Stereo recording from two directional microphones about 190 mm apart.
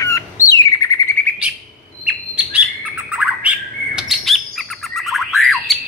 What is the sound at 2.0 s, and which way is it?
Bird, 5° right (ahead or behind).